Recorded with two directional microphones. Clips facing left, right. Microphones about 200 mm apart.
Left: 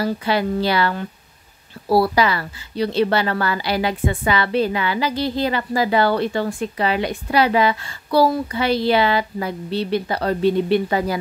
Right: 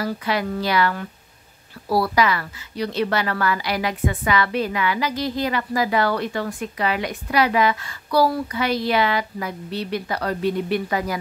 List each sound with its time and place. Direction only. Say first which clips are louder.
0.0 s a woman's voice: left 4 dB; 30° left (ahead or behind)